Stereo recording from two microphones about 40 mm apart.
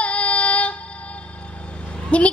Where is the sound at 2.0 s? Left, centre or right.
Left.